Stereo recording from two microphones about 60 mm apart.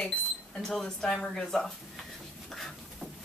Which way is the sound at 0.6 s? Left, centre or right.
Centre.